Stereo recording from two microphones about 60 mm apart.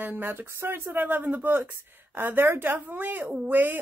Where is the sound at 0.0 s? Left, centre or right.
Right.